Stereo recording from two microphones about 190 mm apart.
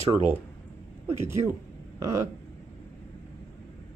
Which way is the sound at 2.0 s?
15° right (ahead or behind).